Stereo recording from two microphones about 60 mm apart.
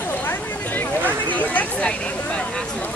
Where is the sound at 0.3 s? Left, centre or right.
Left.